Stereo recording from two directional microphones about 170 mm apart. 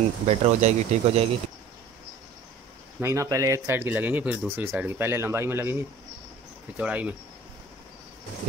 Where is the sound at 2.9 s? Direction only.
15° right (ahead or behind).